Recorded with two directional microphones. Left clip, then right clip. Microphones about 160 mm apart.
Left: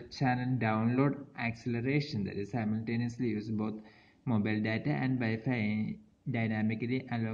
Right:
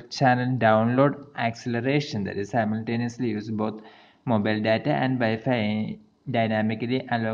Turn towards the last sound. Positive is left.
turn(degrees=-30)  # may be behind; listen again after turning